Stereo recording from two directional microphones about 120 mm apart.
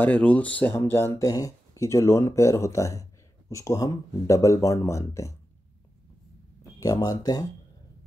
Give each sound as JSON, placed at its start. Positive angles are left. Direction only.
{"t": 0.0, "sound": "speech", "side_deg": 10}
{"t": 6.8, "sound": "speech", "side_deg": 30}